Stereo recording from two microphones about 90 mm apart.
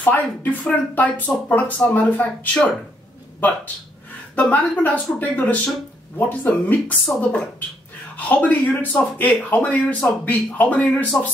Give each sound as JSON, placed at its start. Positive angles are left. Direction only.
{"t": 0.0, "sound": "speech", "side_deg": 20}